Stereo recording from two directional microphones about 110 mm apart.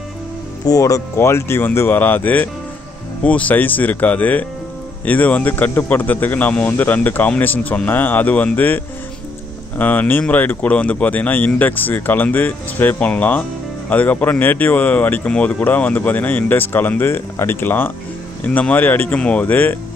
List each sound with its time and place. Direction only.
0.7 s speech: 30° left (ahead or behind); by 19.7 s 15° left (ahead or behind)